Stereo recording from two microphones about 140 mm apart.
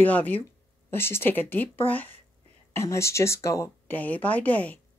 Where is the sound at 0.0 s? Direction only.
10° left (ahead or behind).